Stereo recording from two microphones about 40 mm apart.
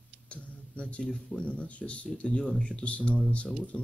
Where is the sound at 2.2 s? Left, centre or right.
Centre.